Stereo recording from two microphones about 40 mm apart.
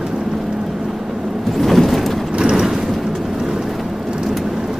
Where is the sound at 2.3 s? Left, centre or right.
Right.